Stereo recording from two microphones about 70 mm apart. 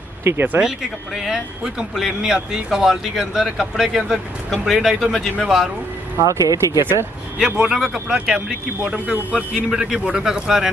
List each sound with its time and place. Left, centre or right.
0.2 s speech: right
0.6 s speech: centre
6.2 s speech: right
6.8 s speech: right
7.3 s a man's voice: centre
8.8 s a man's voice: centre
9.5 s a man's voice: centre